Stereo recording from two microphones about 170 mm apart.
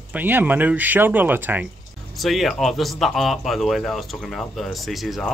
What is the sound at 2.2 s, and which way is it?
Speech, centre (ahead or behind).